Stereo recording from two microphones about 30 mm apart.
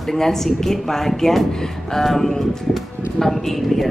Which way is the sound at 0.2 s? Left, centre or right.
Centre.